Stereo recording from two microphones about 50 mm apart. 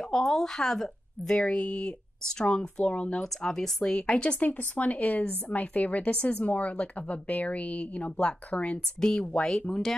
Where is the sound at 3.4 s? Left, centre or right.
Centre.